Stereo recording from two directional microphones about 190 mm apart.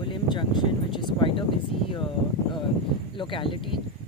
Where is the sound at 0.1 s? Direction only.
25° left (ahead or behind).